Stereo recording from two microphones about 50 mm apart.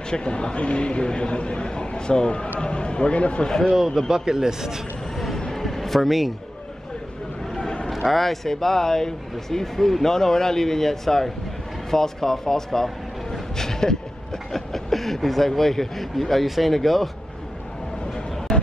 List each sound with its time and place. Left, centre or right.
0.1 s a man's voice: centre
3.7 s speech: centre
5.1 s vehicle: centre
5.4 s music: centre
7.5 s vehicle: centre
7.9 s speech: centre